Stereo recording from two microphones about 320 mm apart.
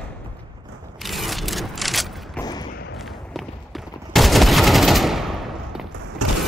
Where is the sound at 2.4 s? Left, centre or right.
Centre.